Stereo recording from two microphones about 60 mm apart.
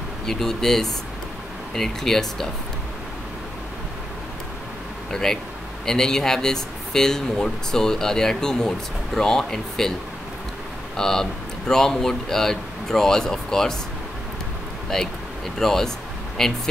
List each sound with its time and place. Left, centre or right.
0.3 s speech: centre
5.1 s speech: centre
11.0 s speech: centre
14.9 s speech: centre